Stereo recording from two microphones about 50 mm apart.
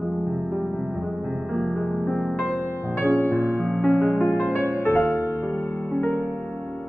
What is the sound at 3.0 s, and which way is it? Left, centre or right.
Music, left.